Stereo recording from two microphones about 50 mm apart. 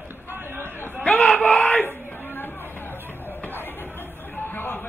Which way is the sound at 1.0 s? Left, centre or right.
Left.